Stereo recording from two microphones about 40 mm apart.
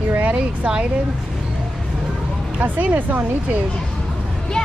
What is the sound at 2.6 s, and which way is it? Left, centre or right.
Speech, right.